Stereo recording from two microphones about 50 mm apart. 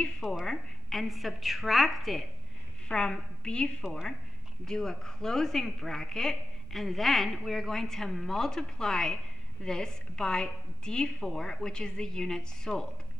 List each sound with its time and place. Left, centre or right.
0.5 s a woman's voice: centre
2.9 s a woman's voice: centre